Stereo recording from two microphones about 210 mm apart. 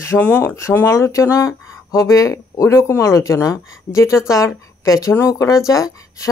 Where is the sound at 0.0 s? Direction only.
10° left (ahead or behind).